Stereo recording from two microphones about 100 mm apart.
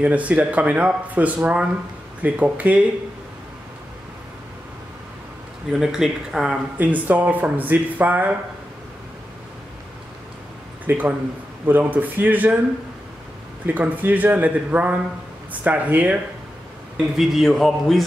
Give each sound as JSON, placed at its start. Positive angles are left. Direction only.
{"t": 0.0, "sound": "speech", "side_deg": -15}
{"t": 5.7, "sound": "speech", "side_deg": -5}
{"t": 6.8, "sound": "speech", "side_deg": -15}
{"t": 10.9, "sound": "speech", "side_deg": -15}
{"t": 13.7, "sound": "speech", "side_deg": -15}
{"t": 16.9, "sound": "speech", "side_deg": 0}